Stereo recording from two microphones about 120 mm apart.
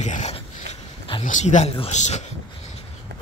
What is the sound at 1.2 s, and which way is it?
Speech, 90° left.